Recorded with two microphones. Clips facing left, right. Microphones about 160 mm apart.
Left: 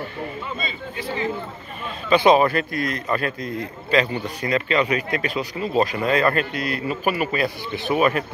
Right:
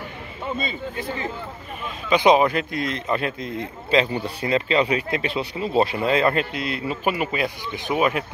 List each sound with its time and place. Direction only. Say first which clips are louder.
0.6 s speech: right 2 dB; 50° right (ahead or behind)
2.0 s a man's voice: left 1 dB; 15° right (ahead or behind)